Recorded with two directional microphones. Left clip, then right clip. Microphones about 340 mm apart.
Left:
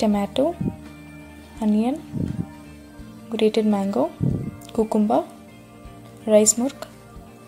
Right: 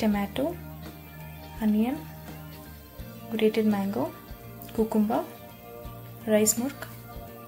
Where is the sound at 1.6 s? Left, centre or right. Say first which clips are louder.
Left 5 dB; left.